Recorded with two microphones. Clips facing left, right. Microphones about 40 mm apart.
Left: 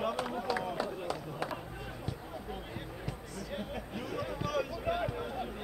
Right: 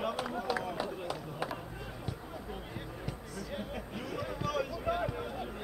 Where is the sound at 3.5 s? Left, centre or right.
Centre.